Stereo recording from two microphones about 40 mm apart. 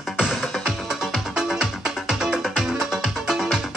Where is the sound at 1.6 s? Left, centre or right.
Centre.